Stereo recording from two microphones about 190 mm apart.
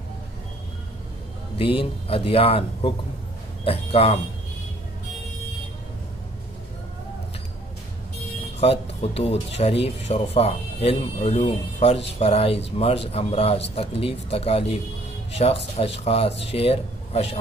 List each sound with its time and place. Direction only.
1.6 s speech: 30° left (ahead or behind)
8.5 s a man's voice: 30° left (ahead or behind)